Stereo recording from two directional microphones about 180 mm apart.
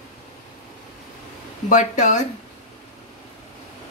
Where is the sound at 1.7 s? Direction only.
45° left (ahead or behind).